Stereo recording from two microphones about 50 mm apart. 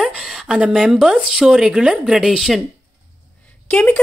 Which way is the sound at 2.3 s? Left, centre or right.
Centre.